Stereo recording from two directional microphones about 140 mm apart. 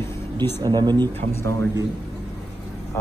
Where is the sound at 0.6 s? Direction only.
30° right (ahead or behind).